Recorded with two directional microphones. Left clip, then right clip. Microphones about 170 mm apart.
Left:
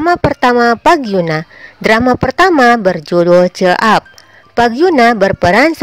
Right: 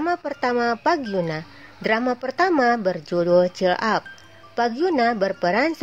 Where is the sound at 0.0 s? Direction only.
45° left (ahead or behind).